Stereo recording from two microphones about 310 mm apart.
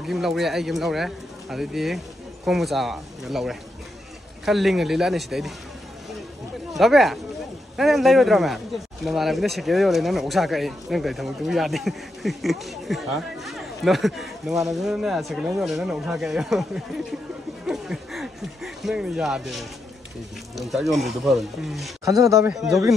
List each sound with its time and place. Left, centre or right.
0.0 s speech: centre
6.7 s speech: centre